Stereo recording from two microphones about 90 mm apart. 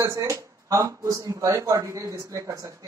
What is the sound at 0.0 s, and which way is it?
Speech, 40° right (ahead or behind).